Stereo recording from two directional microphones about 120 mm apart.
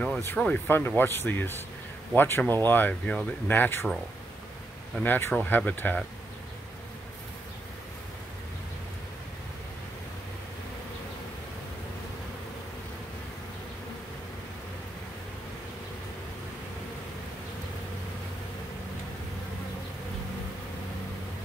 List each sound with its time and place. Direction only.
0.2 s speech: 15° left (ahead or behind)
5.0 s speech: 15° left (ahead or behind)